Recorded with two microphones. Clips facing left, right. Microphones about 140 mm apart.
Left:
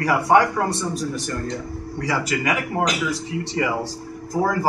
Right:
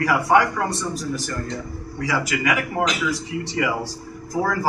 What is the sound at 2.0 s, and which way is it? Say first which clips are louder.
Speech: even; 35° left (ahead or behind).